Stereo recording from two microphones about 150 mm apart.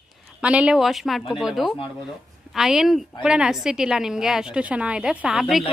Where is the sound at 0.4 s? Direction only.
10° right (ahead or behind).